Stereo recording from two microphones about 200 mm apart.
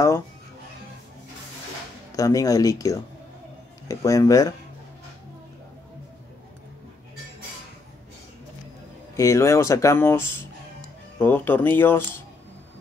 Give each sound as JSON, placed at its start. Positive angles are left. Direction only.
{"t": 2.1, "sound": "speech", "side_deg": 15}
{"t": 9.1, "sound": "speech", "side_deg": 15}